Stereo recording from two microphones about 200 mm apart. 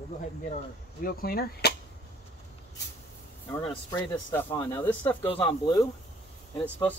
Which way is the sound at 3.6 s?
25° left (ahead or behind).